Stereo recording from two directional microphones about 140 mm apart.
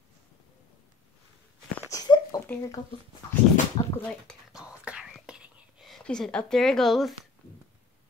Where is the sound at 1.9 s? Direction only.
30° left (ahead or behind).